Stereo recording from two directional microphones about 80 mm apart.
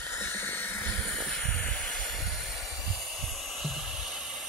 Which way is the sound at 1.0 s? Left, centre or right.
Centre.